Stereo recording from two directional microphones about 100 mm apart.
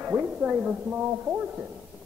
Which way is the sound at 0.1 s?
20° right (ahead or behind).